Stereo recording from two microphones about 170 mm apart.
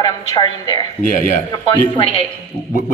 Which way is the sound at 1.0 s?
55° left (ahead or behind).